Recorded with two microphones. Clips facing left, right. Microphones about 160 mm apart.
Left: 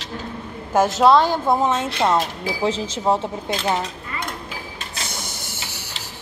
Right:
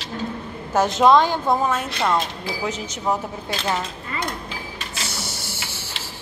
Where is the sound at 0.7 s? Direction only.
5° left (ahead or behind).